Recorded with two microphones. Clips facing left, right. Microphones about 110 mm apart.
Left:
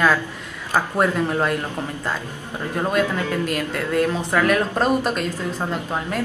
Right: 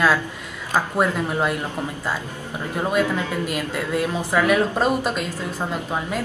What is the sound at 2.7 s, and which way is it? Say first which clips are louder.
Speech: even; 5° right (ahead or behind).